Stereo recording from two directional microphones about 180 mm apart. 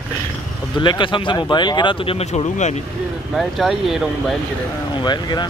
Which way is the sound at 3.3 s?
Centre (ahead or behind).